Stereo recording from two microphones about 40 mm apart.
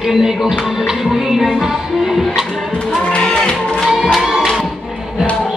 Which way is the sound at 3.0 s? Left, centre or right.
Left.